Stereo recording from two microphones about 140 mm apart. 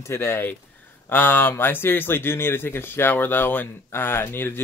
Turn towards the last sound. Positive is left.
turn(degrees=15)  # may be behind; listen again after turning